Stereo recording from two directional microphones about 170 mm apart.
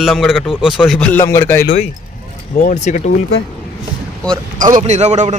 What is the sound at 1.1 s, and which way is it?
Speech, 15° left (ahead or behind).